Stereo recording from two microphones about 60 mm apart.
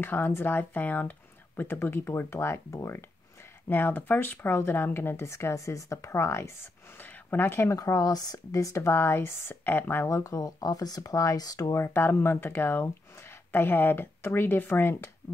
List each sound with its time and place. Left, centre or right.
0.0 s speech: left
1.6 s speech: left
3.6 s speech: left
7.0 s speech: left
7.7 s speech: left
8.9 s speech: left
10.0 s speech: left
11.7 s speech: left